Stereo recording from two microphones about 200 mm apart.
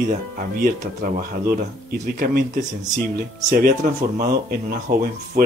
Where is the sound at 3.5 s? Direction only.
45° right (ahead or behind).